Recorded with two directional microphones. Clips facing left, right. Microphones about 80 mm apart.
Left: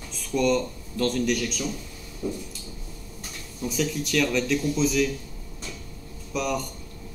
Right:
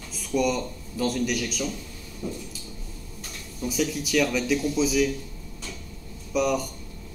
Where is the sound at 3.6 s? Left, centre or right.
Centre.